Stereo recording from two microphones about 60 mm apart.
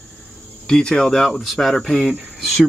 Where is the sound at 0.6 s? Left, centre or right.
Centre.